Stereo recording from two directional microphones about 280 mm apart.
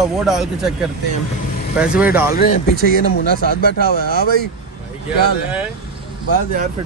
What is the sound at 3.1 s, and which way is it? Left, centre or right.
Speech, left.